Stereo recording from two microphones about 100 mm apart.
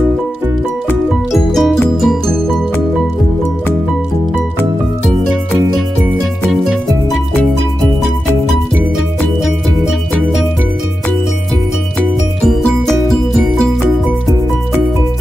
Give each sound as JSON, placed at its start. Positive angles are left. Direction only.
{"t": 1.3, "sound": "music", "side_deg": 0}
{"t": 6.5, "sound": "music", "side_deg": -5}
{"t": 9.4, "sound": "music", "side_deg": -5}
{"t": 12.4, "sound": "music", "side_deg": 5}